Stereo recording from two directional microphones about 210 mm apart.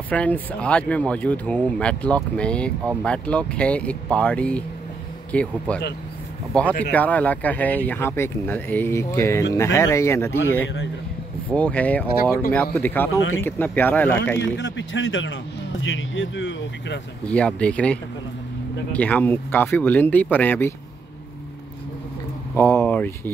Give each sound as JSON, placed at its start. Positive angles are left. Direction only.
{"t": 0.1, "sound": "speech", "side_deg": 5}
{"t": 14.6, "sound": "speech", "side_deg": 60}
{"t": 17.2, "sound": "speech", "side_deg": 5}
{"t": 22.6, "sound": "speech", "side_deg": 10}